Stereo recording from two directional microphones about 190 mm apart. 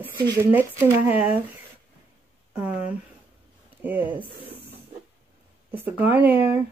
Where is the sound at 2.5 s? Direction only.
5° right (ahead or behind).